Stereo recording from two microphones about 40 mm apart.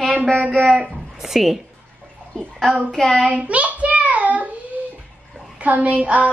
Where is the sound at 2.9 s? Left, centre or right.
Centre.